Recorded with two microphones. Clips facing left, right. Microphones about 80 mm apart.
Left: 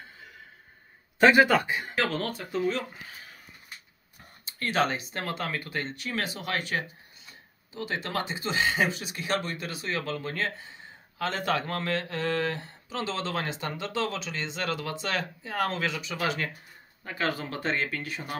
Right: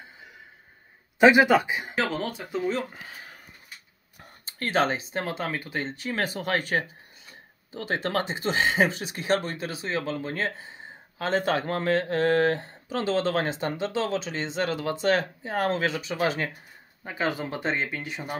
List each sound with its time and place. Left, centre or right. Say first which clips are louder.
1.2 s speech: right 2 dB; centre
4.5 s speech: right 2 dB; right
12.0 s speech: right 7 dB; right
17.0 s speech: right 2 dB; centre